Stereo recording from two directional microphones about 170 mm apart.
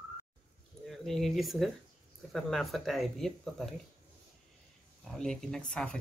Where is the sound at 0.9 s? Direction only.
Centre (ahead or behind).